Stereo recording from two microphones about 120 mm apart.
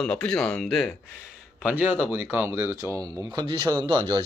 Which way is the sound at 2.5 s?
25° right (ahead or behind).